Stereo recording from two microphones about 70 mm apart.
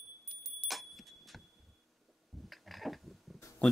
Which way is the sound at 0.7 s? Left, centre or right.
Centre.